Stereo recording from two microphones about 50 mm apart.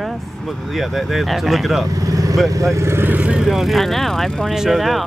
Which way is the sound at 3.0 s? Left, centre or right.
Right.